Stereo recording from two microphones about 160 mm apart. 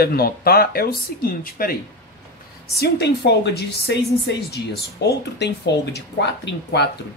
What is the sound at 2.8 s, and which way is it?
A woman's voice, 90° left.